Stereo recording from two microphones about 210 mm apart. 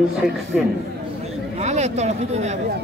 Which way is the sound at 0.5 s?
Centre (ahead or behind).